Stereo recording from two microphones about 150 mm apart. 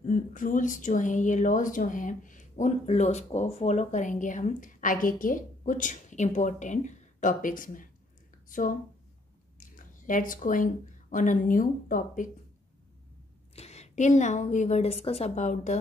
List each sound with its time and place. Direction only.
0.0 s speech: 60° left (ahead or behind)
13.6 s a woman's voice: 45° left (ahead or behind)